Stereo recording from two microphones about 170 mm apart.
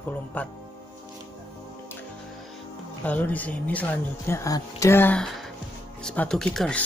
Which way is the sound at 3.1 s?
10° left (ahead or behind).